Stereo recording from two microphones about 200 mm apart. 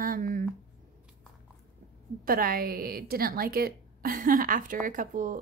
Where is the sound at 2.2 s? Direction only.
45° right (ahead or behind).